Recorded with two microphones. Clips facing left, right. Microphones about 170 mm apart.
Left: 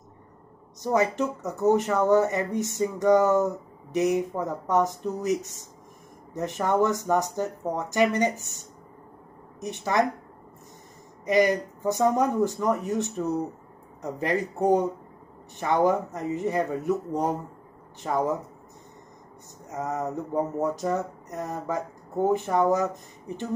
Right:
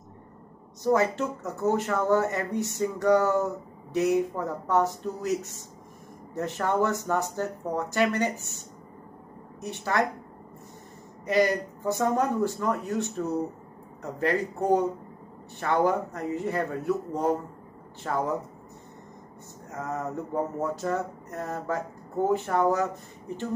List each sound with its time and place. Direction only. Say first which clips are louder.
0.8 s speech: even; 15° left (ahead or behind)
11.2 s speech: left 2 dB; 15° left (ahead or behind)
19.7 s speech: left 3 dB; 20° left (ahead or behind)